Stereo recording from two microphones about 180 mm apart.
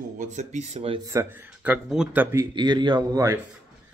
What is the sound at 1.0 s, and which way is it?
Speech, 15° right (ahead or behind).